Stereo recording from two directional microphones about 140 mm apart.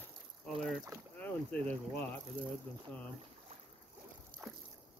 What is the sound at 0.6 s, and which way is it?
Speech, centre (ahead or behind).